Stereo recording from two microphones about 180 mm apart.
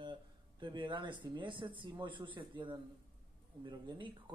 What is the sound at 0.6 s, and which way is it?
Speech, 25° right (ahead or behind).